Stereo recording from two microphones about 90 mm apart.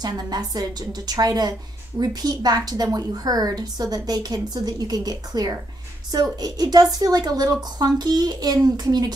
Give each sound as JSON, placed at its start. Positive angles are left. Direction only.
{"t": 0.0, "sound": "a woman's voice", "side_deg": -50}